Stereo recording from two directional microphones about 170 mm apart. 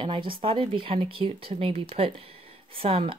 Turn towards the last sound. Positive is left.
turn(degrees=-35)  # may be behind; listen again after turning